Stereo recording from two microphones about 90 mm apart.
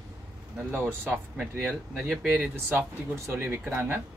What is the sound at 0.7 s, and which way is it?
Speech, 25° right (ahead or behind).